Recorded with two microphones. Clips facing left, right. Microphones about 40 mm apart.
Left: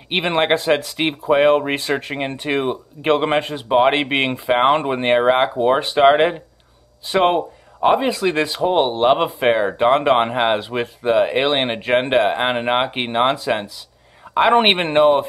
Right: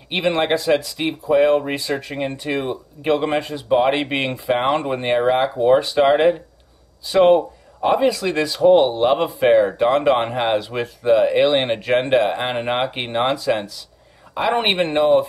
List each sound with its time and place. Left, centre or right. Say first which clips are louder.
0.1 s speech: left 1 dB; left
14.3 s speech: left 5 dB; left